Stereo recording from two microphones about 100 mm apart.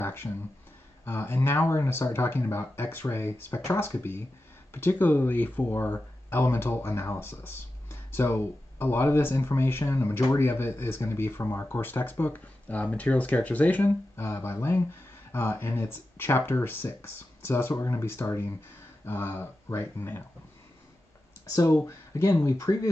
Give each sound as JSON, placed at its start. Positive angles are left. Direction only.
{"t": 0.0, "sound": "a sound", "side_deg": 25}
{"t": 1.0, "sound": "speech", "side_deg": 20}
{"t": 21.8, "sound": "speech", "side_deg": 30}